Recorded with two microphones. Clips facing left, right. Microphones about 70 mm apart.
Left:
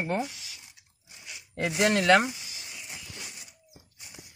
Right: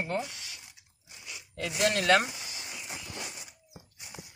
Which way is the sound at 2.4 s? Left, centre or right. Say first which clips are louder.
Right 2 dB; right.